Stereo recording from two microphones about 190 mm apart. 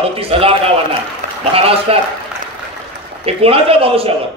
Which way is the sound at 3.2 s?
30° right (ahead or behind).